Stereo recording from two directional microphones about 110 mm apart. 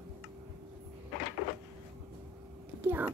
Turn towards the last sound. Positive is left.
turn(degrees=-15)  # may be behind; listen again after turning